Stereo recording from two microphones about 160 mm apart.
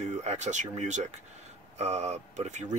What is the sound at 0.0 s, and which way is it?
Speech, 45° right (ahead or behind).